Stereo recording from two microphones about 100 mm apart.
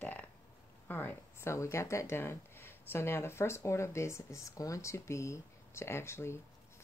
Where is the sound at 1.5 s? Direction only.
30° left (ahead or behind).